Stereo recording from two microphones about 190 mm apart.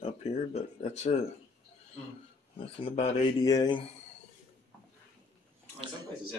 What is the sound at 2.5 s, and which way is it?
Speech, 30° left (ahead or behind).